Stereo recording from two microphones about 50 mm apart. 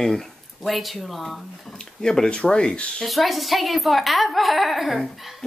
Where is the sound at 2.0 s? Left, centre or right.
Centre.